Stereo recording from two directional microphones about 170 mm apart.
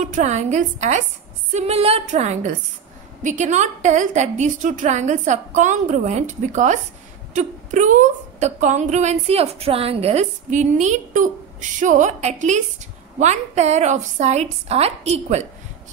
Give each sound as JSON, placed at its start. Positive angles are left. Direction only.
{"t": 0.0, "sound": "a woman's voice", "side_deg": -45}